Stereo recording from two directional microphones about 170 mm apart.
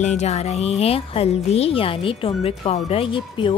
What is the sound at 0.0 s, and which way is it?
A woman's voice, 40° left (ahead or behind).